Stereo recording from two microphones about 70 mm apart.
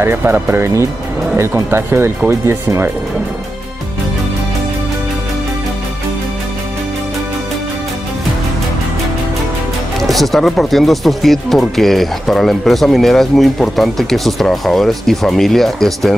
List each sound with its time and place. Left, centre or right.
0.0 s speech: right
10.0 s speech: centre